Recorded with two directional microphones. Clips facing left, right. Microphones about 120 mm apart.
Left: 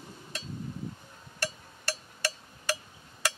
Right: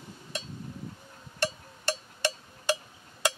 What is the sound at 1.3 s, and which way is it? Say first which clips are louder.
Percussion: right 5 dB; 20° right (ahead or behind).